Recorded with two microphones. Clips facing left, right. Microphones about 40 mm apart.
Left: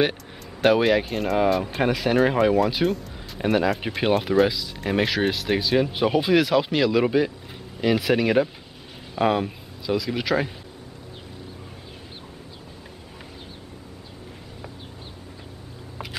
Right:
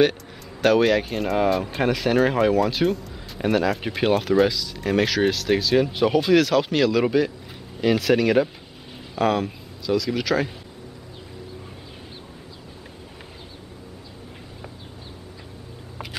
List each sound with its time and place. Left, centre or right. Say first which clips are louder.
0.6 s speech: right 1 dB; centre
4.5 s speech: right 2 dB; centre